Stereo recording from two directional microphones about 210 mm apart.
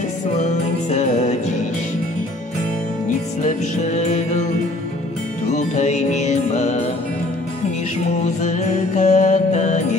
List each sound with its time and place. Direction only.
0.8 s music: 35° left (ahead or behind)
3.4 s music: 35° left (ahead or behind)
5.5 s music: 35° left (ahead or behind)
8.2 s music: 35° left (ahead or behind)